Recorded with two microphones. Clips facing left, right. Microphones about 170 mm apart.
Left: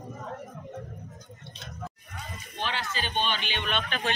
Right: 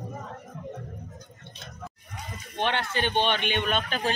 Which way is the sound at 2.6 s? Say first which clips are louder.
Right 6 dB; 60° right (ahead or behind).